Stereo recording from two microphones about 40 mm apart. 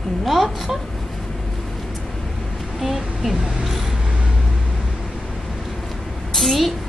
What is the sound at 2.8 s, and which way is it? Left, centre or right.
Speech, centre.